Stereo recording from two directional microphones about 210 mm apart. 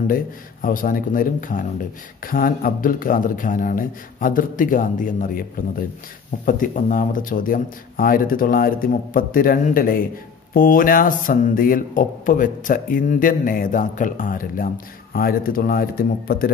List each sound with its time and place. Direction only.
0.0 s a man's voice: 40° left (ahead or behind)